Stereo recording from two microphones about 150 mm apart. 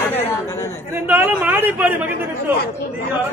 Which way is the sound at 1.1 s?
10° right (ahead or behind).